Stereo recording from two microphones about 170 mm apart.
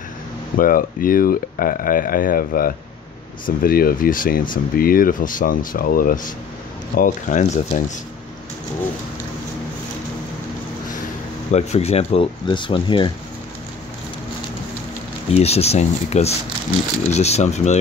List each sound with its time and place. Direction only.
0.6 s speech: 55° left (ahead or behind)
11.5 s speech: 40° left (ahead or behind)
15.3 s speech: 40° left (ahead or behind)